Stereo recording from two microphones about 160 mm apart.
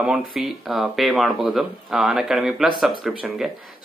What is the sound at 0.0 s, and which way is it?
Speech, 5° right (ahead or behind).